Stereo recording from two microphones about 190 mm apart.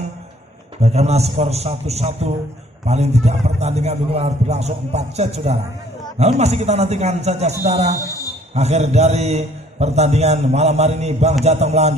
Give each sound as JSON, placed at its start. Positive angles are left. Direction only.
{"t": 0.8, "sound": "a man's voice", "side_deg": -35}